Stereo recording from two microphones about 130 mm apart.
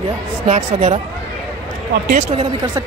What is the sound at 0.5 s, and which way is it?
Speech, 50° right (ahead or behind).